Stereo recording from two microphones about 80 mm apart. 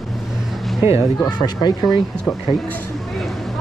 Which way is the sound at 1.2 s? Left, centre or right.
Left.